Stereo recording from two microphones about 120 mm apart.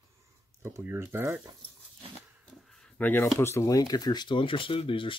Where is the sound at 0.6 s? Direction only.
20° right (ahead or behind).